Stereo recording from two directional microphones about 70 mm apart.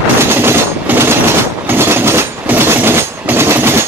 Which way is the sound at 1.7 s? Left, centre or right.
Right.